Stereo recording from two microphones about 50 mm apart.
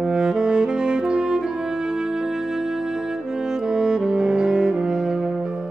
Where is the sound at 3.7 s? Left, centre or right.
Centre.